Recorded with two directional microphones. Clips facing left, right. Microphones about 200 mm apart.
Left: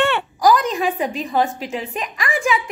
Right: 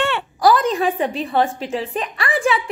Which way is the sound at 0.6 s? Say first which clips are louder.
Right 2 dB; 35° right (ahead or behind).